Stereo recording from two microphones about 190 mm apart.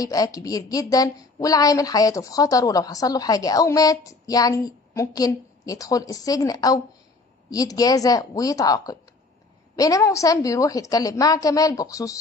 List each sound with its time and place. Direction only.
0.0 s a woman's voice: 20° left (ahead or behind)